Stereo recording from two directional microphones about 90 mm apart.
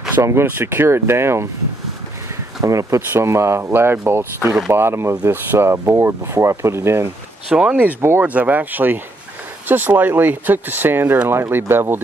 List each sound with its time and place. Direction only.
0.1 s speech: 30° right (ahead or behind)
2.6 s speech: 35° right (ahead or behind)
7.4 s speech: 10° right (ahead or behind)
8.0 s speech: 30° right (ahead or behind)
8.3 s speech: 15° right (ahead or behind)